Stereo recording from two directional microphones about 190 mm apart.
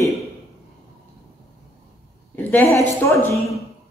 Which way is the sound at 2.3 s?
10° left (ahead or behind).